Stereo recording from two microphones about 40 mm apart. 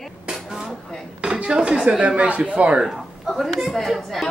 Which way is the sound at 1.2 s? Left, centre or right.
Right.